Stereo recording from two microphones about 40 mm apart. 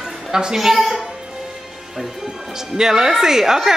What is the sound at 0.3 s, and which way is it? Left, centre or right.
Speech, centre.